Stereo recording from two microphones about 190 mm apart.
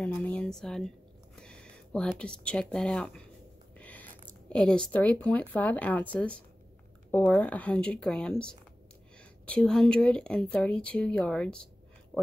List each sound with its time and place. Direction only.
0.0 s speech: 5° left (ahead or behind)